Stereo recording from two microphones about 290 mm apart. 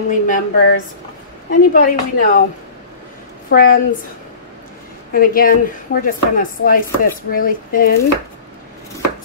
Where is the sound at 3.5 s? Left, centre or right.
Left.